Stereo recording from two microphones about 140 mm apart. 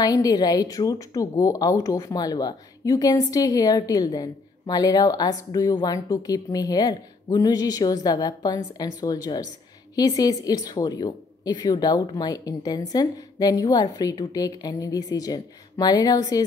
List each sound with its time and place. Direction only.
0.0 s speech: 25° left (ahead or behind)